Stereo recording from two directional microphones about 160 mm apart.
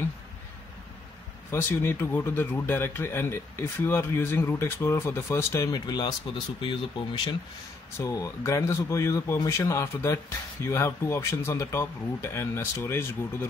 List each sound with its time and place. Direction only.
1.5 s speech: 15° left (ahead or behind); by 6.8 s 30° left (ahead or behind)
8.0 s speech: 20° left (ahead or behind)